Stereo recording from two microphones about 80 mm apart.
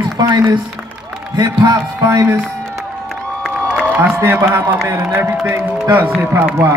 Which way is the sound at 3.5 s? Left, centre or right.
Centre.